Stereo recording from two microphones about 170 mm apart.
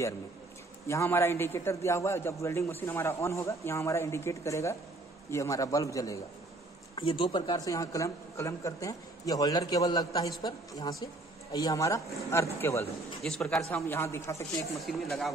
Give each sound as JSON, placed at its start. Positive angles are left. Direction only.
{"t": 0.8, "sound": "a man's voice", "side_deg": 15}
{"t": 13.2, "sound": "speech", "side_deg": 0}
{"t": 13.7, "sound": "a man's voice", "side_deg": 15}
{"t": 14.9, "sound": "speech", "side_deg": 0}